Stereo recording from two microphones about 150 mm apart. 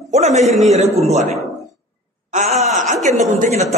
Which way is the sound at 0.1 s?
45° right (ahead or behind).